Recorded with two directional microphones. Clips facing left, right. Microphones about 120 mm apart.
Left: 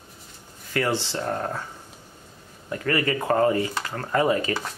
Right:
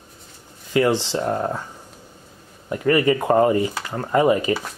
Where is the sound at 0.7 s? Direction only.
20° right (ahead or behind).